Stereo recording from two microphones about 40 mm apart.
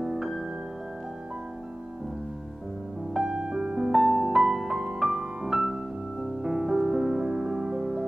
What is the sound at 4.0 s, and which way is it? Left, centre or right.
Music, centre.